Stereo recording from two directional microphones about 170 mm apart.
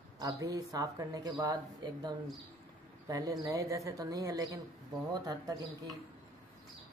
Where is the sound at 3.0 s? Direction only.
20° right (ahead or behind).